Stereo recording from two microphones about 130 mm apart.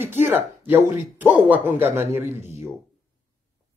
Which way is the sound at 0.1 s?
15° right (ahead or behind).